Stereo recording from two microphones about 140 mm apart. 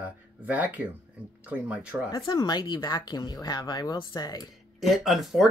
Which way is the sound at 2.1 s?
30° left (ahead or behind).